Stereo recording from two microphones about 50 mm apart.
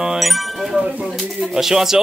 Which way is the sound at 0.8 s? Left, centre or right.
Right.